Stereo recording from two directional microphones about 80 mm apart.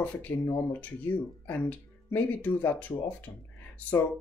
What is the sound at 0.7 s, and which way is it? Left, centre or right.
Speech, centre.